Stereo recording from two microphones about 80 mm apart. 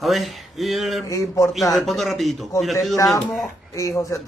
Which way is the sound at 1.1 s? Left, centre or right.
Left.